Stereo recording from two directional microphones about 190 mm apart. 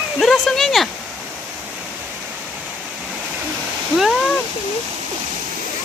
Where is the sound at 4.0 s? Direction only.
Centre (ahead or behind).